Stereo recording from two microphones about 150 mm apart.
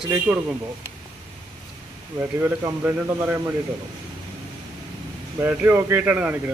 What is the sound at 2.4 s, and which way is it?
Speech, 15° right (ahead or behind).